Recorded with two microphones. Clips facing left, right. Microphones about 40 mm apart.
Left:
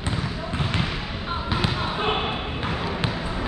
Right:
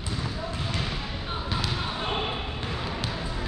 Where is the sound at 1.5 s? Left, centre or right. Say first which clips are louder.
Left 5 dB; left.